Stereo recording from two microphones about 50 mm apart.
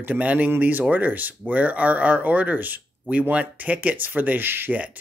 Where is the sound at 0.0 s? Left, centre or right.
Right.